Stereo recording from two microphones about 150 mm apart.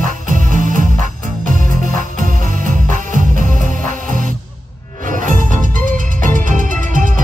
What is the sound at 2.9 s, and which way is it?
Music, 60° right (ahead or behind).